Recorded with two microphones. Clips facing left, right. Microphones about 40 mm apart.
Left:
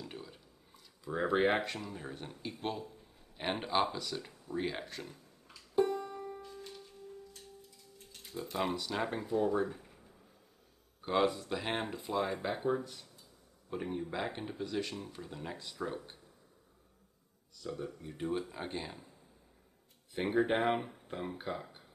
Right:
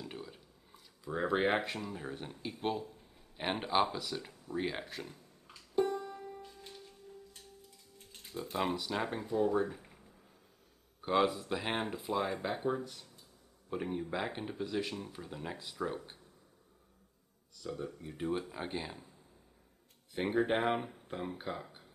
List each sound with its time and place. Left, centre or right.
0.0 s speech: centre
6.0 s music: centre
8.5 s speech: centre
11.1 s speech: centre
17.6 s speech: centre
20.2 s speech: centre